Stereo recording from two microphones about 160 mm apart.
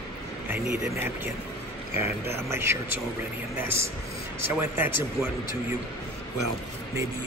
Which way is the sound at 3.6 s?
70° left (ahead or behind).